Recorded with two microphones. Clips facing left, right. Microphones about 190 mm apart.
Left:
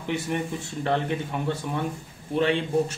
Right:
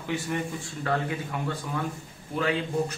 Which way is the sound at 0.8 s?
25° left (ahead or behind).